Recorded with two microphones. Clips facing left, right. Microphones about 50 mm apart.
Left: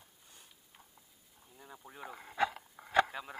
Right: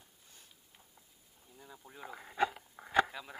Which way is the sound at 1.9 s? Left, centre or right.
Centre.